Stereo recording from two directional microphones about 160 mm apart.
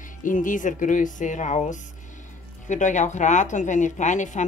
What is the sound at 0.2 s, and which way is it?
A woman's voice, 55° left (ahead or behind).